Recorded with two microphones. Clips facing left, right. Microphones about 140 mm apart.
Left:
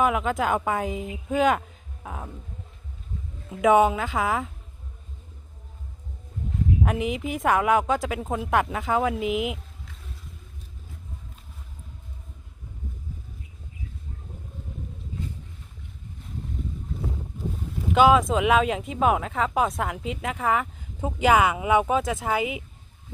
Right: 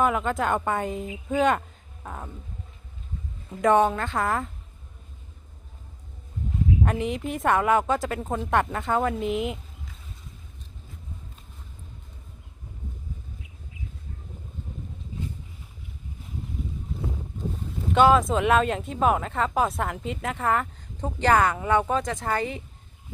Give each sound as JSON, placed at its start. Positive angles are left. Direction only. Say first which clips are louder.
{"t": 0.0, "sound": "speech", "louder": "left 1 dB", "side_deg": 0}
{"t": 2.0, "sound": "a sound", "louder": "left 1 dB", "side_deg": 5}
{"t": 3.4, "sound": "speech", "louder": "left 2 dB", "side_deg": 5}
{"t": 6.8, "sound": "speech", "louder": "even", "side_deg": 0}
{"t": 17.9, "sound": "speech", "louder": "left 1 dB", "side_deg": 0}